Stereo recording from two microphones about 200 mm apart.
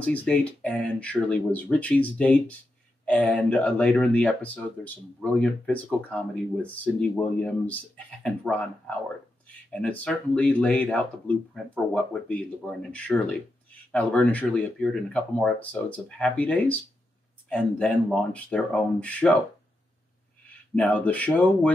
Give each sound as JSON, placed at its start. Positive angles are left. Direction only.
{"t": 0.0, "sound": "speech", "side_deg": 5}
{"t": 20.7, "sound": "speech", "side_deg": 5}